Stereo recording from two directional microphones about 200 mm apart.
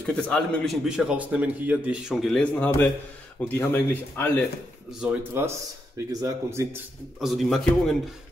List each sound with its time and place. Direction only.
0.0 s a man's voice: 5° left (ahead or behind)
5.0 s speech: 10° right (ahead or behind)
7.2 s a man's voice: centre (ahead or behind)